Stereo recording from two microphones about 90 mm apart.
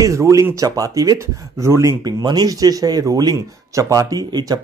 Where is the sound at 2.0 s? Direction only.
50° right (ahead or behind).